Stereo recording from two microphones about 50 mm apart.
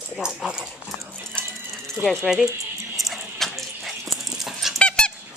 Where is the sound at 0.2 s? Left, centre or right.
Centre.